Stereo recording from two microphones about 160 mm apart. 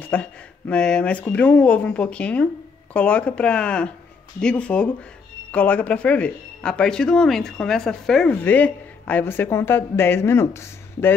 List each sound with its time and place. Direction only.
0.0 s speech: 10° left (ahead or behind)